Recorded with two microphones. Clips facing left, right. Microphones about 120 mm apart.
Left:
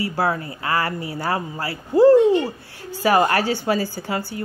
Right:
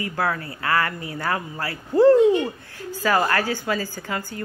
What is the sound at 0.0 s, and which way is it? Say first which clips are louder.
Speech: left 3 dB; 25° left (ahead or behind).